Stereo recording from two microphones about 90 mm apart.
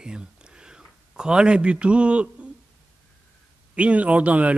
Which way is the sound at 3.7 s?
15° right (ahead or behind).